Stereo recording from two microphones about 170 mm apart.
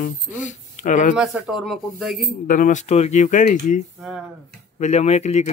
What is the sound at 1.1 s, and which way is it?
Speech, 5° right (ahead or behind).